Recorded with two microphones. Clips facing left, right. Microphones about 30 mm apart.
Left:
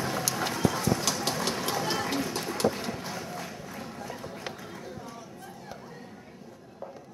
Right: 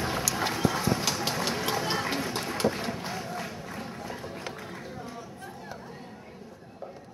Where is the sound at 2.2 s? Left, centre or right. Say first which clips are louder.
Even; right.